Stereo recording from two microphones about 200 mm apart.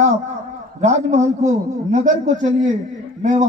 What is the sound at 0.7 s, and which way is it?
A man's voice, 35° right (ahead or behind).